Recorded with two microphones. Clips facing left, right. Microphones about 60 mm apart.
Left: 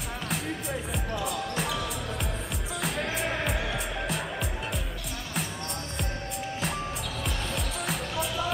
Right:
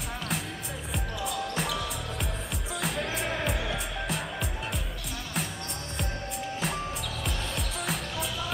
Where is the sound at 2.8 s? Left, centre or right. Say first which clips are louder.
Left 1 dB; centre.